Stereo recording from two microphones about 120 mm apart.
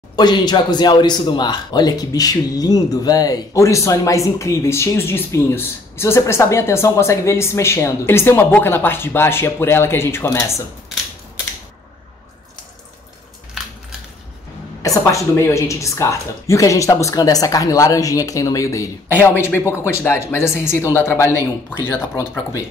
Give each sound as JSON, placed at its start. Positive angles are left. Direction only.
{"t": 0.1, "sound": "speech", "side_deg": 35}
{"t": 14.8, "sound": "speech", "side_deg": 25}